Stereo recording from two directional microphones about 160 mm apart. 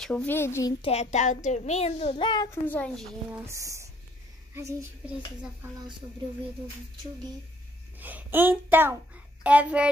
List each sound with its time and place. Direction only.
0.0 s a woman's voice: 5° left (ahead or behind)
0.8 s a child's voice: 45° left (ahead or behind); by 2.5 s 25° left (ahead or behind)
2.6 s a woman's voice: 10° left (ahead or behind)
3.3 s a child's voice: 20° right (ahead or behind)
8.0 s a child's voice: 10° right (ahead or behind)